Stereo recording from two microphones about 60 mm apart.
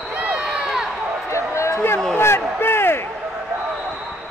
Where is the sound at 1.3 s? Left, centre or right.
Left.